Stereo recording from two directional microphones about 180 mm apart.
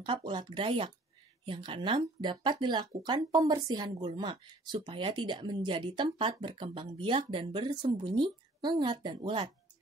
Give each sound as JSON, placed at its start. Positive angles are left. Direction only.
{"t": 0.0, "sound": "speech", "side_deg": -25}